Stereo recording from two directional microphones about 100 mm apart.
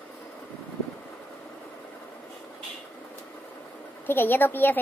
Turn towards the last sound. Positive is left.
turn(degrees=20)  # may be behind; listen again after turning